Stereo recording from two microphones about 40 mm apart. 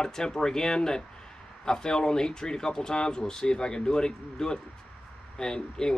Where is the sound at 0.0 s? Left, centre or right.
Centre.